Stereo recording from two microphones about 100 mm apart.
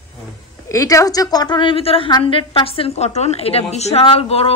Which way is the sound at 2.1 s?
55° left (ahead or behind).